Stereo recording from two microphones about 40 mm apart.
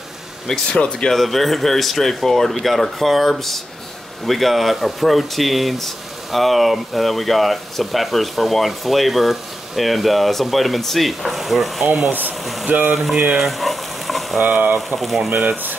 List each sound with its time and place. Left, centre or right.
0.7 s speech: left
1.1 s speech: centre
12.1 s speech: right
13.4 s frying: centre
14.4 s speech: right
15.0 s speech: centre